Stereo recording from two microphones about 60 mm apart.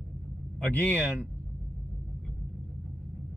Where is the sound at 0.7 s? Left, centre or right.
Left.